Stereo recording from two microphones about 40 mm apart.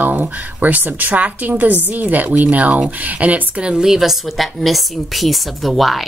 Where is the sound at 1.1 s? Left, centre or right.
Right.